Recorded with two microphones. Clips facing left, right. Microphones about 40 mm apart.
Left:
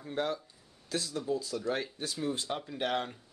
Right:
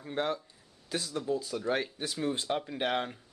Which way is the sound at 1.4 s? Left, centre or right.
Right.